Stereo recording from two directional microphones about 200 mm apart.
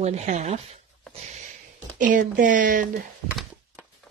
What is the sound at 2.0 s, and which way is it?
Speech, 40° right (ahead or behind).